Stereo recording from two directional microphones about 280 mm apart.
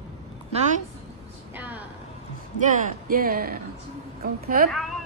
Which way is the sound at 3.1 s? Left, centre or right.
Right.